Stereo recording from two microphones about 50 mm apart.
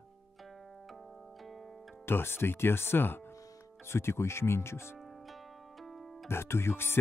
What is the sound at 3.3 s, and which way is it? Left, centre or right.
Speech, left.